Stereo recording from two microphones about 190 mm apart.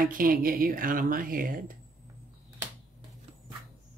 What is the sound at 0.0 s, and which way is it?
Speech, 50° right (ahead or behind).